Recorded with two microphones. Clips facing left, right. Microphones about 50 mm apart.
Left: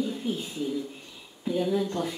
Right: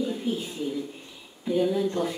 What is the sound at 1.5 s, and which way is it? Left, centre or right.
Speech, centre.